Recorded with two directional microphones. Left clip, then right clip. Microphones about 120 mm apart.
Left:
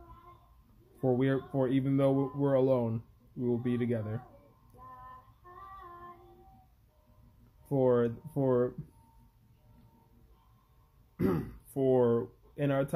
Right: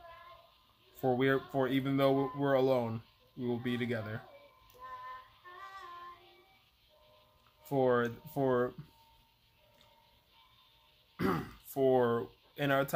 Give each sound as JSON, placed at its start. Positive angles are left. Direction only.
{"t": 1.1, "sound": "speech", "side_deg": -15}
{"t": 7.7, "sound": "speech", "side_deg": -15}
{"t": 11.1, "sound": "speech", "side_deg": -20}